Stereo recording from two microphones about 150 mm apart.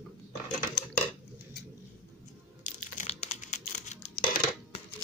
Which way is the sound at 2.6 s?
55° left (ahead or behind).